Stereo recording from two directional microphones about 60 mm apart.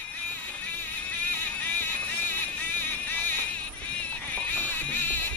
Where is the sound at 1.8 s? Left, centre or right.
Left.